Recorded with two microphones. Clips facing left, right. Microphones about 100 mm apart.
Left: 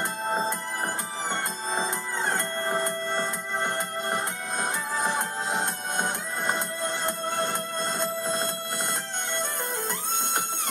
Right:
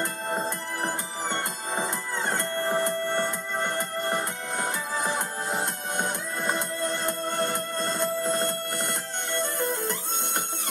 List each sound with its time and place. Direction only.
2.7 s music: 15° left (ahead or behind)
4.9 s music: centre (ahead or behind)
6.4 s music: 15° left (ahead or behind)